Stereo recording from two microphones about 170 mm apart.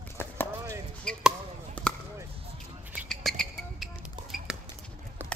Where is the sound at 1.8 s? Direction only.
10° left (ahead or behind).